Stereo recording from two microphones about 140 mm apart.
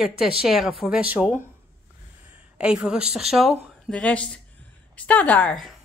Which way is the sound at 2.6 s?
5° right (ahead or behind).